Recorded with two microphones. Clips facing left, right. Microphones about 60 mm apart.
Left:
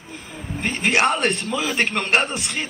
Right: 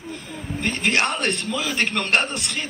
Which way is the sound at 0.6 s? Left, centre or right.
Centre.